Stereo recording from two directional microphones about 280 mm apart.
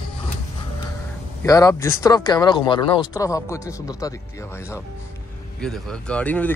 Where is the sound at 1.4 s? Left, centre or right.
Centre.